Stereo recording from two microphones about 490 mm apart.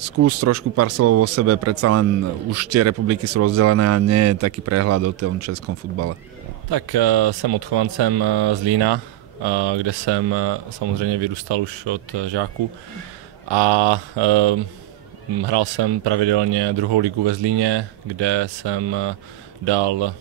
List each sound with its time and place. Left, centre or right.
0.2 s speech: right
6.7 s speech: right
13.5 s mantra: right
15.4 s speech: right